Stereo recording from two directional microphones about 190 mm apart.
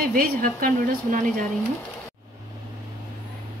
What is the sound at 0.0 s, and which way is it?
A woman's voice, 45° right (ahead or behind).